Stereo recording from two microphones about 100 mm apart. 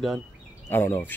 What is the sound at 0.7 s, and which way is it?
Speech, 20° left (ahead or behind).